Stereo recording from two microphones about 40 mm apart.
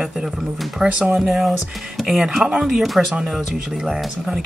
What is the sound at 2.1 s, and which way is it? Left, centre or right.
Speech, centre.